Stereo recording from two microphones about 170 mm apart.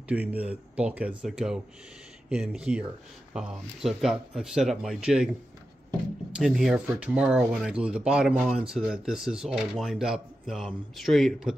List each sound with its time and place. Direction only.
0.1 s speech: 10° right (ahead or behind)
6.3 s speech: centre (ahead or behind)